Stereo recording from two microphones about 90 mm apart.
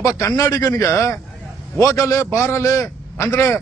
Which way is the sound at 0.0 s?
35° left (ahead or behind).